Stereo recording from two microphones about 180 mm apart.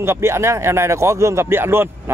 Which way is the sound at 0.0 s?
15° right (ahead or behind).